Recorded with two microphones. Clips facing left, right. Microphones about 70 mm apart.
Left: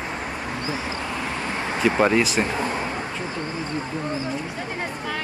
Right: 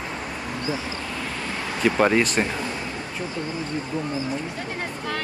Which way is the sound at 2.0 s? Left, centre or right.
Centre.